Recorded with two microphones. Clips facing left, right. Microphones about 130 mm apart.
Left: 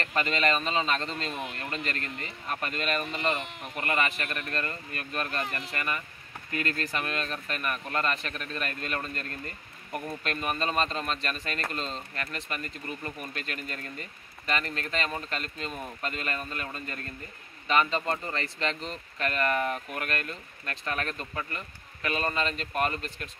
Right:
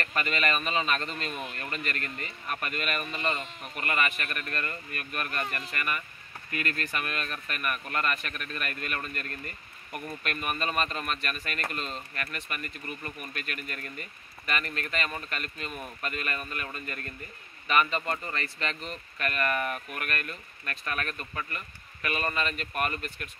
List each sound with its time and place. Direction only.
0.0 s speech: 25° left (ahead or behind)